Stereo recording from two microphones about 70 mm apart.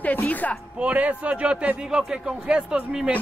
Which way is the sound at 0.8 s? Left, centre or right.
Right.